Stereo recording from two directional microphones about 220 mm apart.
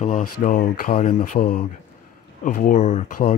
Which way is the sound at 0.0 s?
40° left (ahead or behind).